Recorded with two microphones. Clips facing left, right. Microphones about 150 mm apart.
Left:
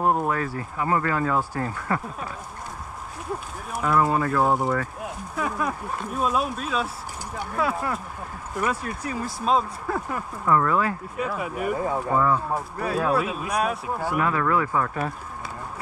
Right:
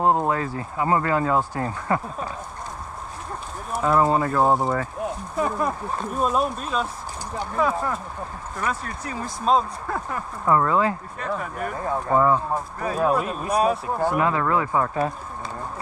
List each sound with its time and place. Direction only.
0.0 s speech: 25° right (ahead or behind)
3.8 s speech: 30° right (ahead or behind)
11.1 s speech: 10° left (ahead or behind)
12.1 s speech: 35° right (ahead or behind)
14.2 s speech: 30° right (ahead or behind)